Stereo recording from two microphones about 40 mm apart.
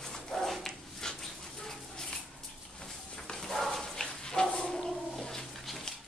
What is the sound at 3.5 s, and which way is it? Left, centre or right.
Bow-wow, centre.